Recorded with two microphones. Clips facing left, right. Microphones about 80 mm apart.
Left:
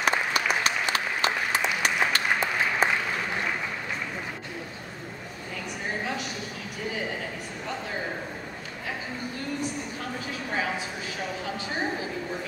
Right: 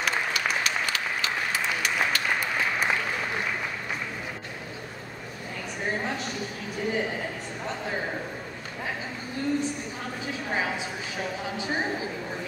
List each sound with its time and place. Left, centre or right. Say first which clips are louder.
0.0 s applause: left 2 dB; left